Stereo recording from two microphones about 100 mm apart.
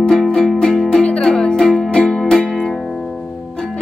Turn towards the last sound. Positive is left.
turn(degrees=5)  # may be behind; listen again after turning